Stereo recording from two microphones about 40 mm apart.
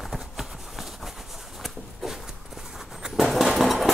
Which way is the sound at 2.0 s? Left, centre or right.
Centre.